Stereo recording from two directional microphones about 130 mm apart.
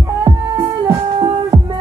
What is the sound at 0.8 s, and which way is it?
Music, 25° right (ahead or behind).